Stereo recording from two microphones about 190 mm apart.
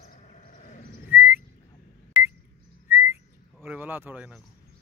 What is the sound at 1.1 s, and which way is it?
Whistling, 10° right (ahead or behind).